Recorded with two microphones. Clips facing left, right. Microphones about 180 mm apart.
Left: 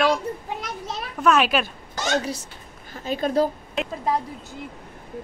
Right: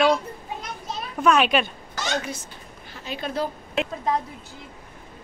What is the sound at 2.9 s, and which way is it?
Speech, 45° left (ahead or behind).